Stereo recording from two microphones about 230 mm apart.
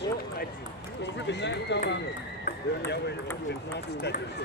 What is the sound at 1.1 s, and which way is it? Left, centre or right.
Run, left.